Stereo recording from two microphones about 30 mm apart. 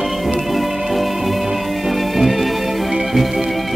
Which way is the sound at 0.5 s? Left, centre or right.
Centre.